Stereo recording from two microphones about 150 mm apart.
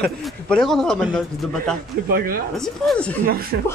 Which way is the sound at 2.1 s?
75° right (ahead or behind).